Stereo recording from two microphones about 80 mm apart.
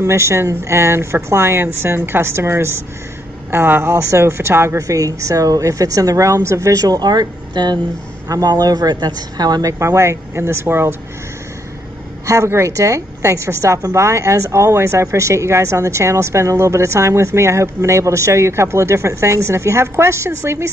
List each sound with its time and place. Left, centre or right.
0.0 s a woman's voice: right
4.7 s a woman's voice: right
8.3 s a woman's voice: right
12.3 s a woman's voice: right